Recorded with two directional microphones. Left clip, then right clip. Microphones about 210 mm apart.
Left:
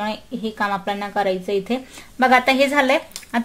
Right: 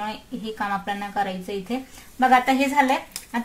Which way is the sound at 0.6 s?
55° left (ahead or behind).